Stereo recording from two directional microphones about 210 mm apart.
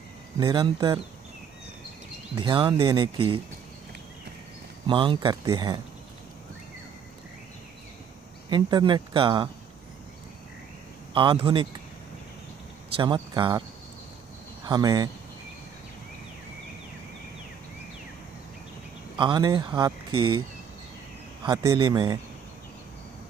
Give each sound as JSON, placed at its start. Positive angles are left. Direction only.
{"t": 0.4, "sound": "speech", "side_deg": -20}
{"t": 2.3, "sound": "speech", "side_deg": -20}
{"t": 4.8, "sound": "speech", "side_deg": -25}
{"t": 8.5, "sound": "speech", "side_deg": -20}
{"t": 11.1, "sound": "speech", "side_deg": -25}
{"t": 12.9, "sound": "speech", "side_deg": -20}
{"t": 19.1, "sound": "speech", "side_deg": -20}
{"t": 21.5, "sound": "speech", "side_deg": -20}